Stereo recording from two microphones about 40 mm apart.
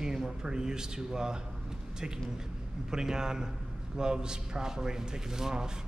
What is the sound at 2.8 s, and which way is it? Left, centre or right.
A man's voice, centre.